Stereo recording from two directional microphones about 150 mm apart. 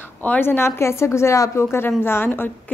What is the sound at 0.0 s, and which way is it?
A woman's voice, 10° left (ahead or behind).